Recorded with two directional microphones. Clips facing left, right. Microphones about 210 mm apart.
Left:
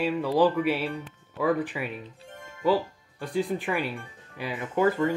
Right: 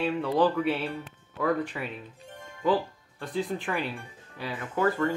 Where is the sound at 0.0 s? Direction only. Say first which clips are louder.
Left 2 dB; 5° left (ahead or behind).